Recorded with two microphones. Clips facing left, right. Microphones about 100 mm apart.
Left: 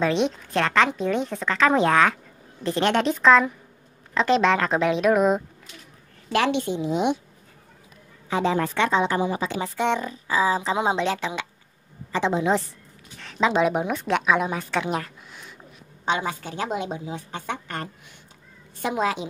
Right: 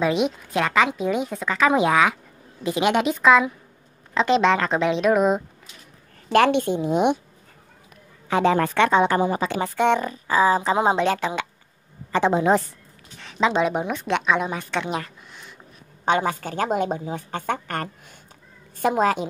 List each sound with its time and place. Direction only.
0.0 s a woman's voice: 5° right (ahead or behind)
6.3 s a woman's voice: 50° right (ahead or behind)
8.3 s a woman's voice: 60° right (ahead or behind)
13.2 s a woman's voice: centre (ahead or behind)
16.1 s a woman's voice: 50° right (ahead or behind)